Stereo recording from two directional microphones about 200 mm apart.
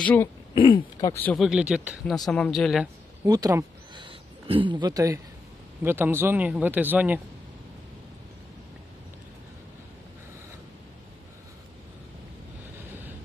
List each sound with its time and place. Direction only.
0.0 s speech: 10° left (ahead or behind)
0.6 s speech: 25° left (ahead or behind); by 2.9 s centre (ahead or behind)
3.3 s speech: 20° right (ahead or behind)